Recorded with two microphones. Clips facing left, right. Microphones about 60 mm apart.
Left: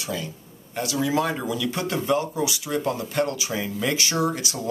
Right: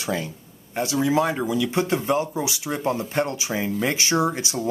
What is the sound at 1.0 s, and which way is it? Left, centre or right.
Speech, right.